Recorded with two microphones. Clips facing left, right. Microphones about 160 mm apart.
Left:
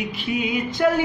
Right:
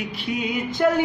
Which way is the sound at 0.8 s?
Centre (ahead or behind).